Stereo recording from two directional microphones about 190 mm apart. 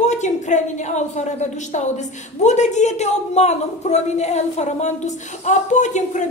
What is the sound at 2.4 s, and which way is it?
Speech, 40° left (ahead or behind).